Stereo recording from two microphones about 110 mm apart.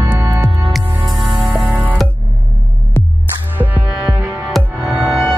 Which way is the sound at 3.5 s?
15° right (ahead or behind).